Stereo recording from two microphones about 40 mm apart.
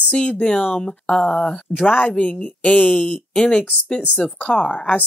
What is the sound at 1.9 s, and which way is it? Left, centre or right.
Speech, left.